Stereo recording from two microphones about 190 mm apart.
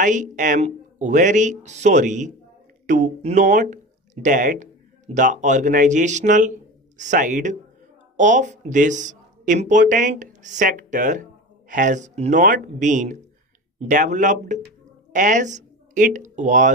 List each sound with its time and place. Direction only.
0.0 s speech: 40° right (ahead or behind)